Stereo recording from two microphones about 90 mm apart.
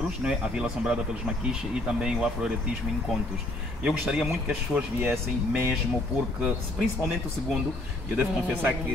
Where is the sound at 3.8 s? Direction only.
5° right (ahead or behind).